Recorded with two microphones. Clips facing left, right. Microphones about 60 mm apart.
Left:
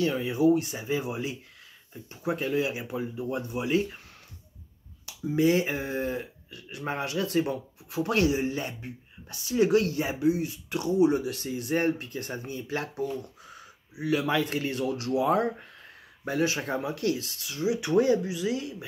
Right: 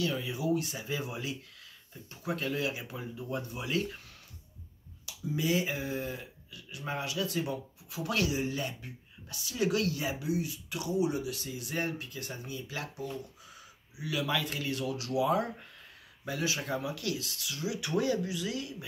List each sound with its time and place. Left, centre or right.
0.0 s speech: left
5.0 s speech: left